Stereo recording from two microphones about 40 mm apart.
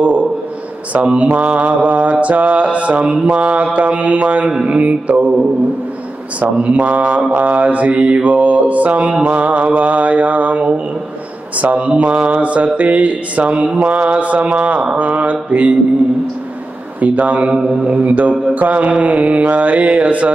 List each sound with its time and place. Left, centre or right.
0.9 s mantra: right
6.6 s mantra: right
9.1 s a sound: right
9.4 s mantra: right
12.1 s a sound: right
12.4 s mantra: right
17.0 s mantra: right